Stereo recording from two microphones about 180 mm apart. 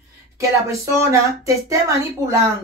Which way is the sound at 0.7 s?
15° right (ahead or behind).